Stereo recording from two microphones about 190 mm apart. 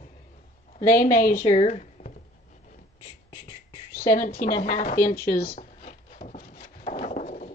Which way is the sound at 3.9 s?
45° left (ahead or behind).